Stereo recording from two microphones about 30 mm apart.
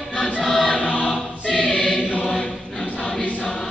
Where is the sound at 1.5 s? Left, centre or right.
Left.